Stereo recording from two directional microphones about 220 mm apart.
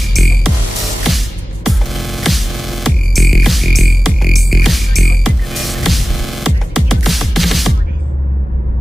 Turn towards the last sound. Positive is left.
turn(degrees=0)  # may be behind; listen again after turning